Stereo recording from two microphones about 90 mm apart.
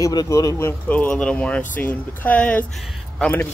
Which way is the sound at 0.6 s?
20° left (ahead or behind).